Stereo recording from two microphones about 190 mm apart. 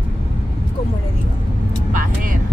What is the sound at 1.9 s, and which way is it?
Vehicle, 45° right (ahead or behind).